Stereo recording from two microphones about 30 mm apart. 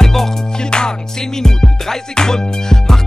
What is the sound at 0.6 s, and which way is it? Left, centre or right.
Music, left.